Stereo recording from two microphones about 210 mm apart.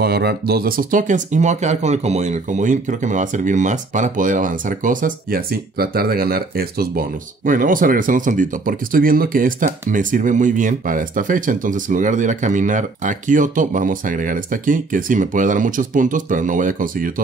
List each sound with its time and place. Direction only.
0.0 s speech: 50° right (ahead or behind)